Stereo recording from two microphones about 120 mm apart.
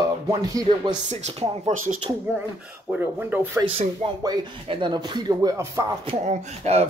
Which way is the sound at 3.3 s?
15° right (ahead or behind).